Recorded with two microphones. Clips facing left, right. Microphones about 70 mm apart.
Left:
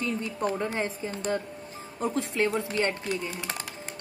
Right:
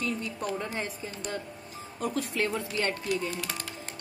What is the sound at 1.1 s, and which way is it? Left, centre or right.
Speech, left.